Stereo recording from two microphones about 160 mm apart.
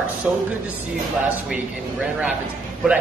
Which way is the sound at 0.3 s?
5° right (ahead or behind).